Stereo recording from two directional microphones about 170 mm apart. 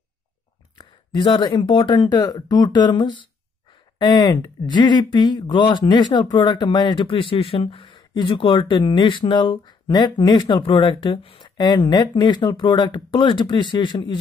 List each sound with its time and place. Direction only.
0.7 s speech: 25° left (ahead or behind)